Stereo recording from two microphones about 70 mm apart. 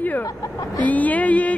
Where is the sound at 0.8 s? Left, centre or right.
Left.